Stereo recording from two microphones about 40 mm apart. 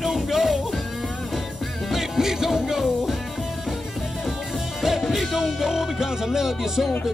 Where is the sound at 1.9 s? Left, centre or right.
Centre.